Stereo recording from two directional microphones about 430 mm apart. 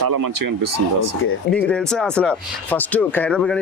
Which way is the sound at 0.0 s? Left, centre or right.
Right.